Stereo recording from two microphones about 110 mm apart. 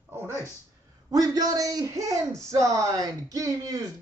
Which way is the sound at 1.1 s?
35° right (ahead or behind).